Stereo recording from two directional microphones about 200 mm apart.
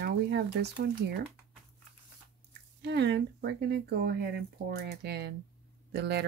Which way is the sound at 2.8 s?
60° right (ahead or behind).